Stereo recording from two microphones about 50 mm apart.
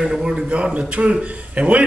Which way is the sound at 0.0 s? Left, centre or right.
Centre.